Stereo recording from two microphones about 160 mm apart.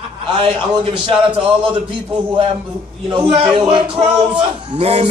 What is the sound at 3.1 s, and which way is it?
A man's voice, 35° right (ahead or behind).